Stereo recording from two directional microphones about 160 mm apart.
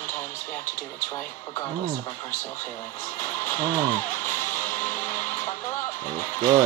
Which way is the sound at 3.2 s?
15° left (ahead or behind).